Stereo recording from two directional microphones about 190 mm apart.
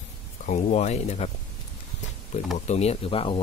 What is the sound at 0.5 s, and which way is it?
Speech, 35° left (ahead or behind).